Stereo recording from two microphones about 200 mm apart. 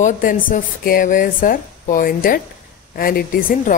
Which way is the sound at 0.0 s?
40° left (ahead or behind).